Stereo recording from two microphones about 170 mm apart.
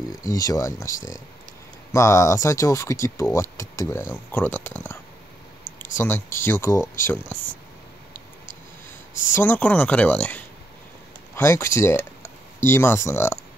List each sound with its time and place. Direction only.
0.2 s speech: 20° left (ahead or behind)
9.3 s speech: 10° left (ahead or behind)